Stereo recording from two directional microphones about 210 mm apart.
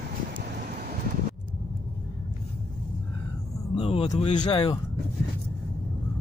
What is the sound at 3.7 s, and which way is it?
Vehicle, 30° left (ahead or behind).